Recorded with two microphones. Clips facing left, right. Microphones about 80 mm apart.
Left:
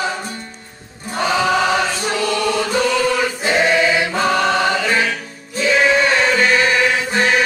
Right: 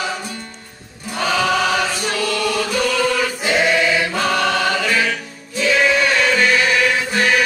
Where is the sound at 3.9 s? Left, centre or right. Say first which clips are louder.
Left 2 dB; centre.